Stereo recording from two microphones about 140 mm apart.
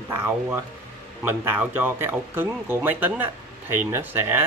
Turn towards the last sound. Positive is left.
turn(degrees=-15)  # may be behind; listen again after turning